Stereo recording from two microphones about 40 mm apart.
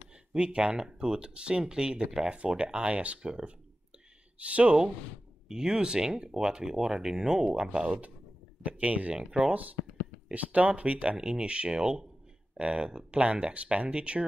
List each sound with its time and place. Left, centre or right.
0.3 s speech: right
4.4 s speech: right
5.5 s speech: centre
8.6 s speech: right
9.1 s speech: centre
9.5 s speech: right